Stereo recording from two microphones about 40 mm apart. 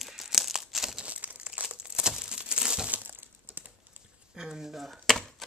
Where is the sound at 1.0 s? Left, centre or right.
Right.